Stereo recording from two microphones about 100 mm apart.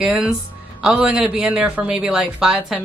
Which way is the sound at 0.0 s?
10° right (ahead or behind).